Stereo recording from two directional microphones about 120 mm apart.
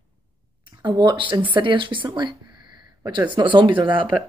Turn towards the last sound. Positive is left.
turn(degrees=-40)  # may be behind; listen again after turning